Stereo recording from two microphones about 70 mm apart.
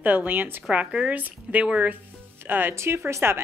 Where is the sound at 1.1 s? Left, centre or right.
Right.